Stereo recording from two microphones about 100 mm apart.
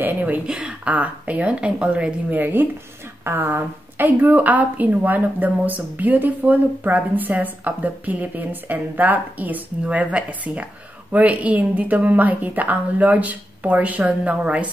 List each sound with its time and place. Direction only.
0.0 s speech: 20° right (ahead or behind)